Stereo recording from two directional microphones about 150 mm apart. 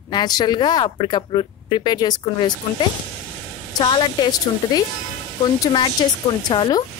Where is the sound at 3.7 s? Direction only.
30° left (ahead or behind).